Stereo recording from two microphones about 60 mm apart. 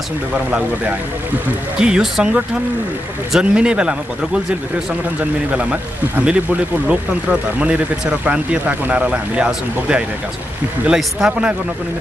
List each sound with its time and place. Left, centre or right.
0.3 s speech: right
1.8 s speech: centre
10.9 s speech: centre
11.2 s speech: centre